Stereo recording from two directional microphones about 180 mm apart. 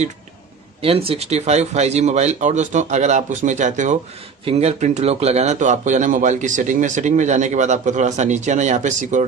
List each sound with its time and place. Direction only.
0.8 s speech: 30° right (ahead or behind)